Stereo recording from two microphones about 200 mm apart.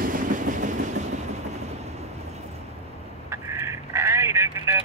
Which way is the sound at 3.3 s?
15° right (ahead or behind).